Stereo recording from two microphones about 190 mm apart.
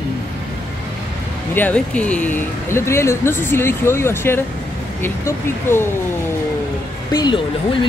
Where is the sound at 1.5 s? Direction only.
10° left (ahead or behind).